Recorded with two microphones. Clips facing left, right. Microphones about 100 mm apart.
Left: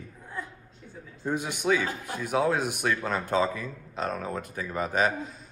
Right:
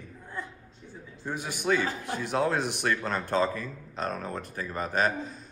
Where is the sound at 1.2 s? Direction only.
15° left (ahead or behind).